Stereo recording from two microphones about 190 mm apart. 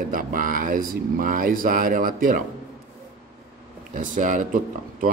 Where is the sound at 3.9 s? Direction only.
40° right (ahead or behind).